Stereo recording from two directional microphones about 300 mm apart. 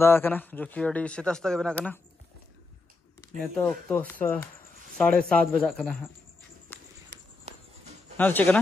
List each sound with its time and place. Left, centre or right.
0.0 s speech: centre
3.2 s speech: centre
6.7 s walk: centre
7.1 s walk: right
8.2 s speech: centre